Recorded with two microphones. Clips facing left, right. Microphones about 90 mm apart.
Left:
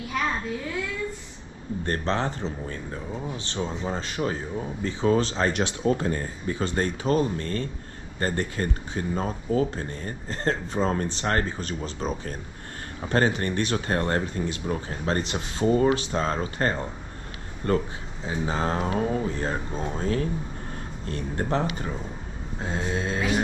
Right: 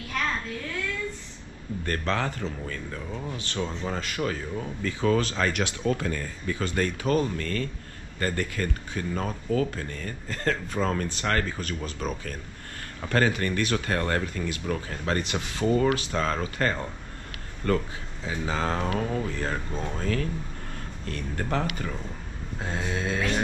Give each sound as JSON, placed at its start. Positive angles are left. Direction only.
{"t": 0.1, "sound": "child singing", "side_deg": 10}
{"t": 1.9, "sound": "speech", "side_deg": 25}
{"t": 18.8, "sound": "speech", "side_deg": 15}